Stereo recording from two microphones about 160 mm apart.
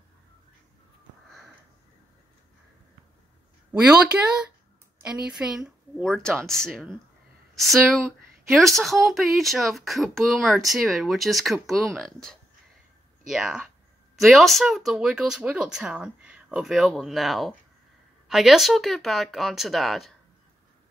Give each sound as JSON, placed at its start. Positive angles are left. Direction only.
{"t": 3.7, "sound": "speech", "side_deg": -5}